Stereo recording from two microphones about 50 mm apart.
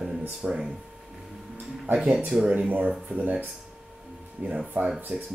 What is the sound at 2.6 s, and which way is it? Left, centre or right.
Speech, right.